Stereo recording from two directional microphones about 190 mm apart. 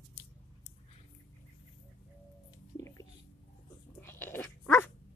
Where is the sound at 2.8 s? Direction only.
20° left (ahead or behind).